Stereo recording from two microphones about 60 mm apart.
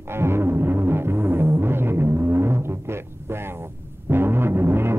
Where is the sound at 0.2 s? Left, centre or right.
Right.